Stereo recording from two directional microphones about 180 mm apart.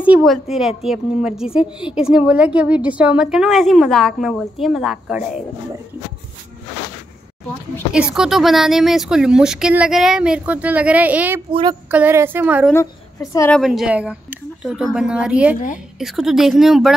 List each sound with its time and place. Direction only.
0.0 s a woman's voice: 5° right (ahead or behind)
7.9 s a woman's voice: 5° right (ahead or behind)
12.7 s a woman's voice: 20° left (ahead or behind)
13.5 s a woman's voice: centre (ahead or behind)